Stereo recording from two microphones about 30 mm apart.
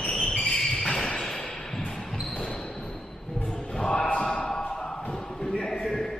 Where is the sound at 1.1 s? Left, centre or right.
Centre.